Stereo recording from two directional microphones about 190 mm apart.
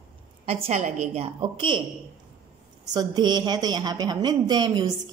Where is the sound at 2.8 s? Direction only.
20° right (ahead or behind).